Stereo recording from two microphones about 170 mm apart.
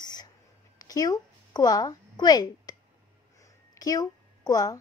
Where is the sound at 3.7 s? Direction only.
20° left (ahead or behind).